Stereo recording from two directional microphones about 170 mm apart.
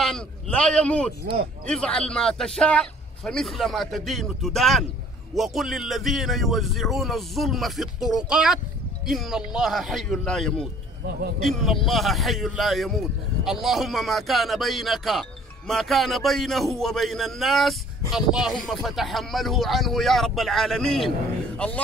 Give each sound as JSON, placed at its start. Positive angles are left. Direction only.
{"t": 0.0, "sound": "a man's voice", "side_deg": 5}
{"t": 1.2, "sound": "speech", "side_deg": -70}
{"t": 1.7, "sound": "a man's voice", "side_deg": 5}